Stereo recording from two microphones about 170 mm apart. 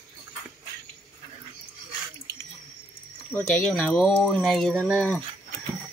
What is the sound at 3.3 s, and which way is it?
Speech, 10° left (ahead or behind).